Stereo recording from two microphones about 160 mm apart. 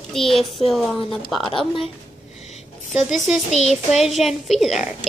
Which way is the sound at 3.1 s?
Centre (ahead or behind).